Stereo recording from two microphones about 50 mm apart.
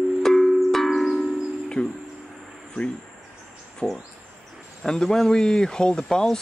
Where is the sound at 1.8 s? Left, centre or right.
Left.